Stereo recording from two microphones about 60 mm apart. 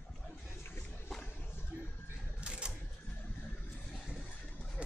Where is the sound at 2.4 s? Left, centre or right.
Centre.